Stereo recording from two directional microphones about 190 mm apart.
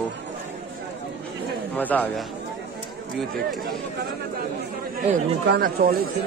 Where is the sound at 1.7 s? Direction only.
10° left (ahead or behind).